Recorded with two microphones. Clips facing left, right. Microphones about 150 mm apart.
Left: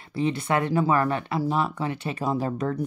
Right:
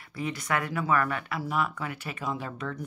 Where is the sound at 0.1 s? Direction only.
30° left (ahead or behind).